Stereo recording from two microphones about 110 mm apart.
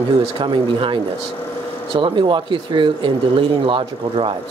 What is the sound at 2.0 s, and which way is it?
Speech, 45° right (ahead or behind).